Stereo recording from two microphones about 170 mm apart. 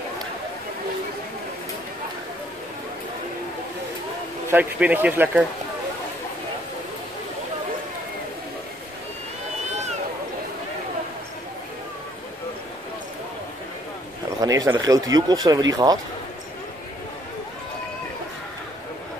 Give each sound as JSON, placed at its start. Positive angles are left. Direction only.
{"t": 4.5, "sound": "speech", "side_deg": -10}
{"t": 14.4, "sound": "speech", "side_deg": -20}